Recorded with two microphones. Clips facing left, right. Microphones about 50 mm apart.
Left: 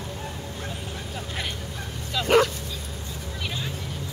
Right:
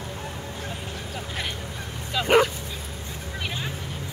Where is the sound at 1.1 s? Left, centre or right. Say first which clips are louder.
Right 1 dB; centre.